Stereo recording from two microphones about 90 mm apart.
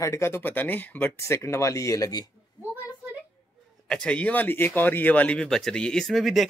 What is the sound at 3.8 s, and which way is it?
Speech, 10° left (ahead or behind).